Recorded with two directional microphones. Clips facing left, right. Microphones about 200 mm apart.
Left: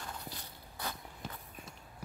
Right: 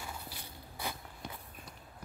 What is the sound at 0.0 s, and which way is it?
Walk, 10° right (ahead or behind).